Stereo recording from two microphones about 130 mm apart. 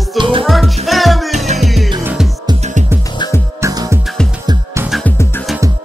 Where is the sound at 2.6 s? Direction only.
70° right (ahead or behind).